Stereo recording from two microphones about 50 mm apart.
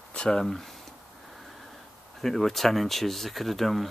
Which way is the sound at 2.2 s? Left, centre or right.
Centre.